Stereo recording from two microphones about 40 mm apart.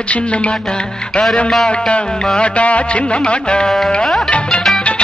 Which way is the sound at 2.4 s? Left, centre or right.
Left.